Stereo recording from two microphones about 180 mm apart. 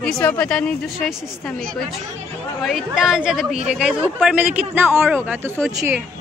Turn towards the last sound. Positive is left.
turn(degrees=0)  # may be behind; listen again after turning